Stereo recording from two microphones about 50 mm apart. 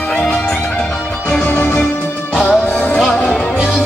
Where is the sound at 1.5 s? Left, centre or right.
Left.